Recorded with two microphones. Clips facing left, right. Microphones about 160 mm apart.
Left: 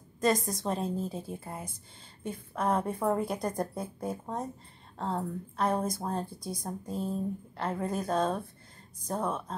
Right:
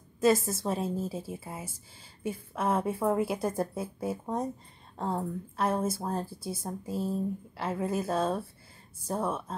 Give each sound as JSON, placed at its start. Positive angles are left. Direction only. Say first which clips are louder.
{"t": 0.2, "sound": "a woman's voice", "louder": "right 3 dB", "side_deg": -5}